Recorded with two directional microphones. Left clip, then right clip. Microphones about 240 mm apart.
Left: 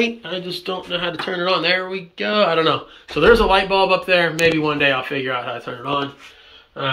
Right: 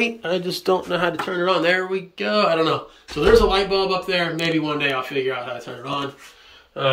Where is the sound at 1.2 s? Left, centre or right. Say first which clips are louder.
Left 3 dB; centre.